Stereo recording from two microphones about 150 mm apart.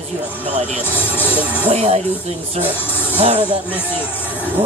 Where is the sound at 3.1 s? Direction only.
35° right (ahead or behind).